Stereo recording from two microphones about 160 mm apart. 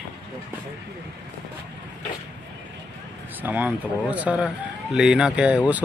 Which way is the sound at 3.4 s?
10° right (ahead or behind).